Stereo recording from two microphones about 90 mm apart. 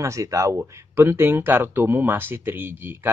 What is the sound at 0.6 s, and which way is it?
Speech, 25° right (ahead or behind).